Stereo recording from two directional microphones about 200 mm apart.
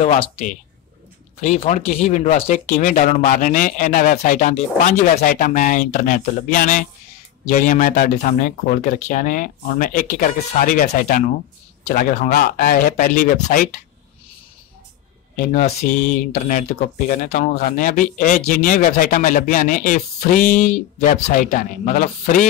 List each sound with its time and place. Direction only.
0.0 s speech: 30° left (ahead or behind)
15.3 s speech: 40° left (ahead or behind)